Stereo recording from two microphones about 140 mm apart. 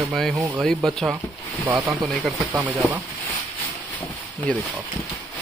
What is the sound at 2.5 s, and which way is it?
Speech, 10° right (ahead or behind).